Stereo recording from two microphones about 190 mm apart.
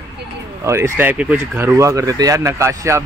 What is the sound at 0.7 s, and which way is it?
Speech, 15° right (ahead or behind).